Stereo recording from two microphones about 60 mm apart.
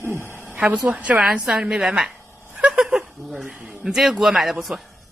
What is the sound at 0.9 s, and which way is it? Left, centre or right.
A woman's voice, right.